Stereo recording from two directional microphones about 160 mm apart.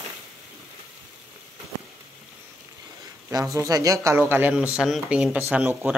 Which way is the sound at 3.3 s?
20° right (ahead or behind).